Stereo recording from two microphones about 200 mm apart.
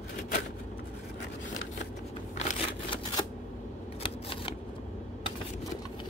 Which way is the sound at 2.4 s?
30° left (ahead or behind).